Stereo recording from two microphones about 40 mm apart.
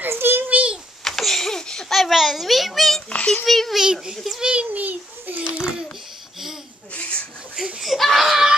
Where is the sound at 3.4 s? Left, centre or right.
Centre.